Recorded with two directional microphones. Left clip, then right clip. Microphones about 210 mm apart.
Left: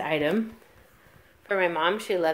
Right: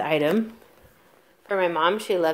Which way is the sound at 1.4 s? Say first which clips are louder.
Right 2 dB; 5° right (ahead or behind).